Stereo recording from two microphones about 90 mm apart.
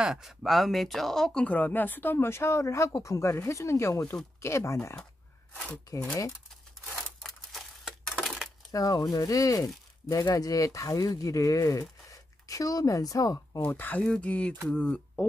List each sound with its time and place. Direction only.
0.0 s speech: 5° right (ahead or behind)
1.4 s speech: 15° left (ahead or behind)
7.0 s a sound: 5° left (ahead or behind)
8.7 s speech: 45° left (ahead or behind)
13.6 s speech: 20° left (ahead or behind)